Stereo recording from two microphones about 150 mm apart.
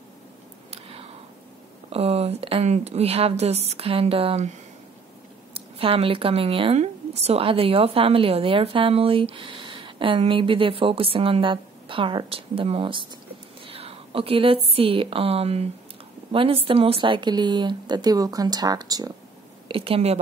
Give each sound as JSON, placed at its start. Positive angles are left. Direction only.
{"t": 0.7, "sound": "a sound", "side_deg": -40}
{"t": 1.9, "sound": "a woman's voice", "side_deg": -40}
{"t": 19.7, "sound": "speech", "side_deg": -40}